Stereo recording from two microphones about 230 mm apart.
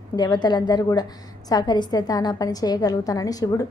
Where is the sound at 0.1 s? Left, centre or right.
Centre.